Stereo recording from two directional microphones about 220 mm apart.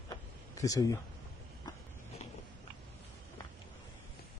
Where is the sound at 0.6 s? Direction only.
15° left (ahead or behind).